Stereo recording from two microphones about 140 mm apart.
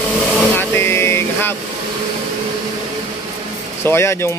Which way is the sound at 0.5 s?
15° left (ahead or behind).